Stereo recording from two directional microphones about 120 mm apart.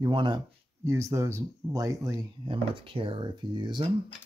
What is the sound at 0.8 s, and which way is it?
Speech, 25° right (ahead or behind).